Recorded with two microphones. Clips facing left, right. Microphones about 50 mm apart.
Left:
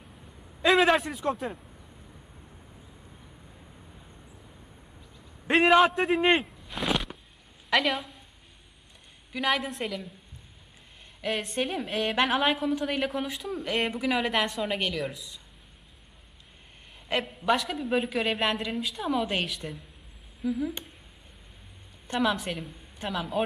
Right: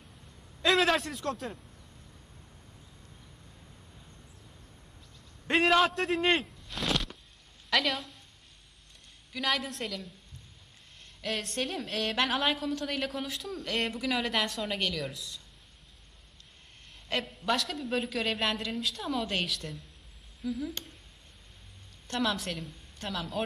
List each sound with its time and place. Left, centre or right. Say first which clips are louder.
0.0 s a sound: left 4 dB; centre
7.7 s a woman's voice: left 3 dB; centre
9.3 s a woman's voice: left 4 dB; centre
11.1 s a woman's voice: left 4 dB; centre
17.1 s a woman's voice: left 4 dB; centre
22.0 s a woman's voice: left 4 dB; centre